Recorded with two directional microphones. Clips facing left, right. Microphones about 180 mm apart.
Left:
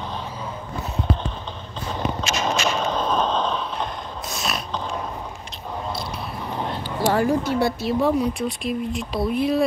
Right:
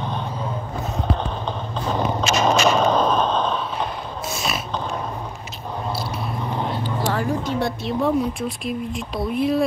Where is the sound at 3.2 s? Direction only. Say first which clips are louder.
Right 1 dB; 55° right (ahead or behind).